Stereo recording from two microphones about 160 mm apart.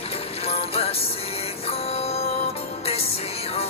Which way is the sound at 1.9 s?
40° left (ahead or behind).